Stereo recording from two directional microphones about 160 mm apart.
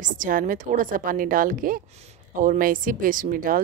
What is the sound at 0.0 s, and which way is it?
Speech, 55° right (ahead or behind).